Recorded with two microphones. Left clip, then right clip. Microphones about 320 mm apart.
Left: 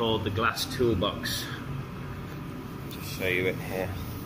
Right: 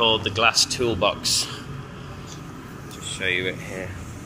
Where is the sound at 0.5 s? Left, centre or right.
Right.